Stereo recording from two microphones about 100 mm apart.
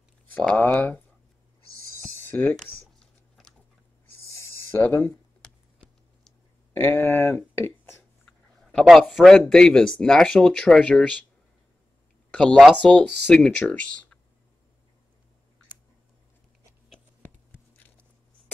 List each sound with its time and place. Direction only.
0.3 s speech: 15° left (ahead or behind)
2.0 s a sound: 20° left (ahead or behind)
2.3 s speech: 10° left (ahead or behind)
4.2 s a sound: 30° left (ahead or behind)
4.6 s speech: 20° left (ahead or behind)
6.7 s speech: 20° left (ahead or behind)
8.7 s a man's voice: centre (ahead or behind)
12.3 s speech: 10° left (ahead or behind)
17.7 s a sound: 15° left (ahead or behind)